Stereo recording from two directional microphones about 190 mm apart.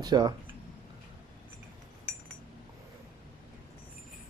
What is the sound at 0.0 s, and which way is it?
Speech, 20° right (ahead or behind).